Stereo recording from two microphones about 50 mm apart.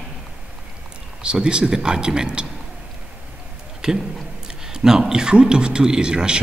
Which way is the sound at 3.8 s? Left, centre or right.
Centre.